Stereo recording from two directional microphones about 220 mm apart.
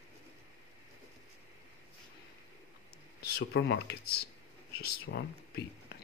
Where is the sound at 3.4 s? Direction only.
50° left (ahead or behind).